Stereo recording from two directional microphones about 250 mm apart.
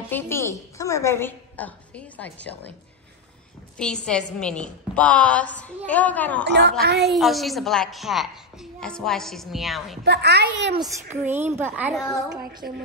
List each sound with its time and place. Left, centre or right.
0.1 s a woman's voice: centre
3.7 s a woman's voice: centre
6.4 s a woman's voice: right
7.1 s a woman's voice: centre
10.0 s a woman's voice: right
10.8 s a woman's voice: centre
12.6 s a woman's voice: right